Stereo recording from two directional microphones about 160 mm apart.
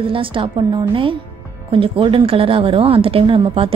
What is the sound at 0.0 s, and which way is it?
A woman's voice, 35° right (ahead or behind).